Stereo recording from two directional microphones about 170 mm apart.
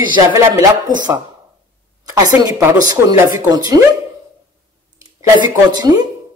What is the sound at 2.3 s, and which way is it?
Speech, 20° right (ahead or behind).